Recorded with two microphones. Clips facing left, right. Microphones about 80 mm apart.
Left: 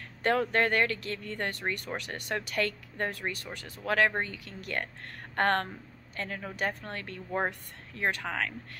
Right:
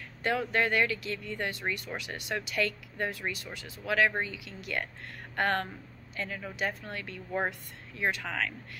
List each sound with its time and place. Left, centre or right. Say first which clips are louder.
0.2 s speech: left 2 dB; left
8.2 s speech: left 1 dB; left